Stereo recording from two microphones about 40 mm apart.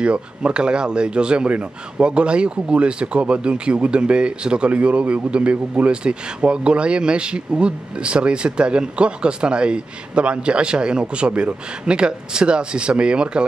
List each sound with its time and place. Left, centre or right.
0.0 s speech: right